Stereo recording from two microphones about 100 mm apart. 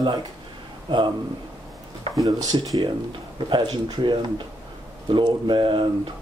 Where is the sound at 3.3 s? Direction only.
50° right (ahead or behind).